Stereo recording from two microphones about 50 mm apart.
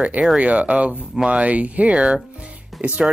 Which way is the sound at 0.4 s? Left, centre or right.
Right.